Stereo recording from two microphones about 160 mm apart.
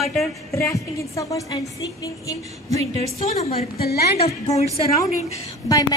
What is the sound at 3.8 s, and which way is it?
Speech, 75° left (ahead or behind).